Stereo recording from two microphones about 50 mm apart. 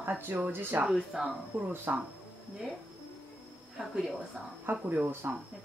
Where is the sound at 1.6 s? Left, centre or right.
Right.